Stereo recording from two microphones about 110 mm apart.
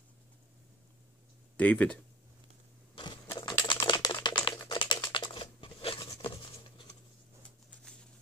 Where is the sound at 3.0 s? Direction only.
45° left (ahead or behind).